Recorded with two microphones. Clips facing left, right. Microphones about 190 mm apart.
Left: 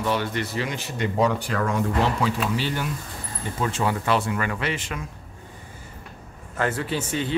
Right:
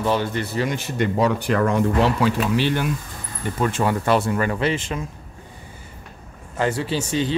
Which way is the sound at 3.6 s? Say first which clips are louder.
Right 4 dB; 55° right (ahead or behind).